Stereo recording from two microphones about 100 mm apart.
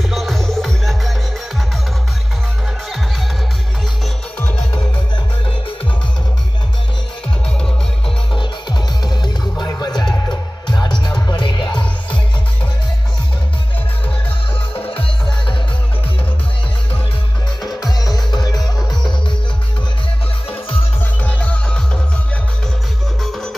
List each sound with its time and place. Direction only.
0.1 s music: centre (ahead or behind)
4.4 s music: 15° left (ahead or behind)
8.4 s music: 45° left (ahead or behind)
17.9 s music: 40° left (ahead or behind)
21.2 s music: 15° left (ahead or behind)
23.2 s music: centre (ahead or behind)